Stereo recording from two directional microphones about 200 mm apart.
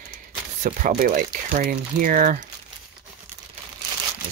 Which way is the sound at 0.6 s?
45° right (ahead or behind).